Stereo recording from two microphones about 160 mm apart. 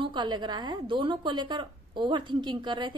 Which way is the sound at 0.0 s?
30° right (ahead or behind).